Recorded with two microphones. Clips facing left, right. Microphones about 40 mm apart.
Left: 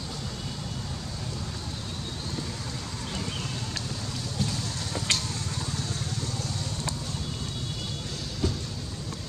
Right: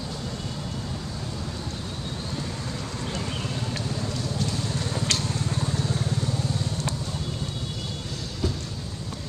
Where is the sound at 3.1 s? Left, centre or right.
Centre.